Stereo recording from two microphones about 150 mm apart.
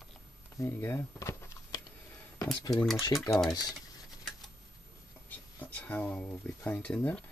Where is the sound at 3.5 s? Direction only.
25° left (ahead or behind).